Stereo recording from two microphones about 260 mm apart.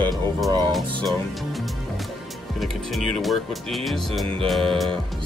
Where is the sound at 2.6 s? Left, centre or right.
Centre.